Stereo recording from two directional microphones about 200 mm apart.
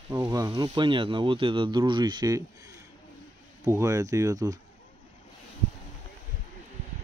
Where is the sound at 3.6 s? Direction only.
15° right (ahead or behind).